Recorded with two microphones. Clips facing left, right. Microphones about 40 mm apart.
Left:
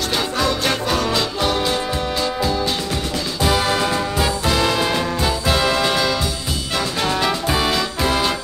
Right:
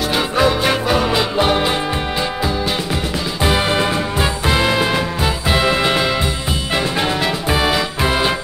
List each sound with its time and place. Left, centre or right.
0.1 s music: centre
3.4 s music: right
7.5 s music: centre